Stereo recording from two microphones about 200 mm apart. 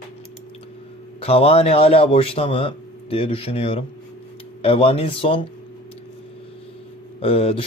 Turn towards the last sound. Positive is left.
turn(degrees=30)  # may be behind; listen again after turning